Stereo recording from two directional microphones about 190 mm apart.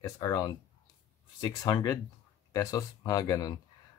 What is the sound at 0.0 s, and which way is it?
Speech, 20° left (ahead or behind).